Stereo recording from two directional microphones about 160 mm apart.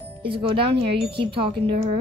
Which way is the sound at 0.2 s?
35° right (ahead or behind).